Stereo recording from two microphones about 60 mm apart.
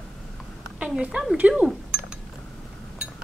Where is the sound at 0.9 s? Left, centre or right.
Centre.